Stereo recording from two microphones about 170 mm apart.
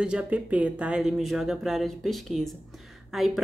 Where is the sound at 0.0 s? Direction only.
5° right (ahead or behind).